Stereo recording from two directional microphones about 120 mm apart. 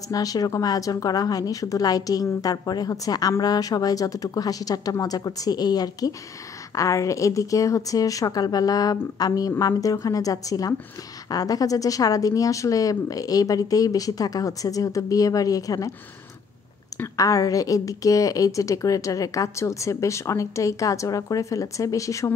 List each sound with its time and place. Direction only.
0.1 s a woman's voice: 30° left (ahead or behind)
16.9 s a woman's voice: 30° left (ahead or behind)